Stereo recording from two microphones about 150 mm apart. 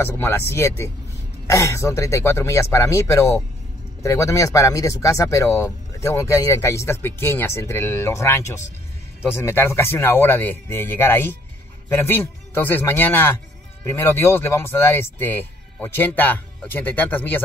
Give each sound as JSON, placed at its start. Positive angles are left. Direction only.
{"t": 0.0, "sound": "speech", "side_deg": 15}